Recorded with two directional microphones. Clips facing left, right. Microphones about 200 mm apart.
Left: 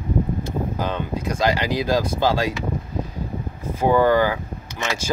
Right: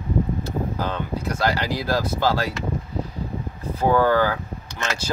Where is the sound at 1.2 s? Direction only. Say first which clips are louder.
Left 2 dB; 15° left (ahead or behind).